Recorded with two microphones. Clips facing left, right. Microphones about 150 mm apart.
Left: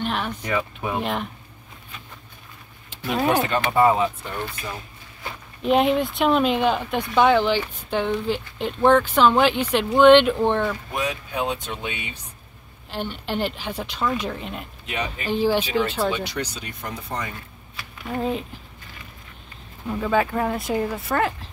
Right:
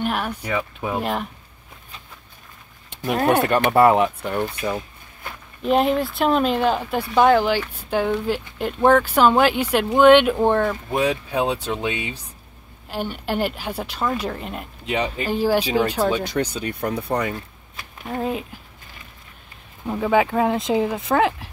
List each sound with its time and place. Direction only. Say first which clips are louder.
0.0 s speech: right 2 dB; 10° right (ahead or behind)
3.4 s speech: right 3 dB; 60° right (ahead or behind)
5.6 s speech: even; centre (ahead or behind)
10.7 s speech: right 5 dB; 25° right (ahead or behind)
12.9 s speech: right 2 dB; 10° right (ahead or behind)
14.9 s speech: right 6 dB; 30° right (ahead or behind)
15.2 s speech: even; 10° right (ahead or behind)
16.1 s speech: right 4 dB; 45° right (ahead or behind); by 17.3 s 65° right (ahead or behind)
18.0 s speech: even; 5° right (ahead or behind)
19.9 s speech: right 3 dB; 15° right (ahead or behind)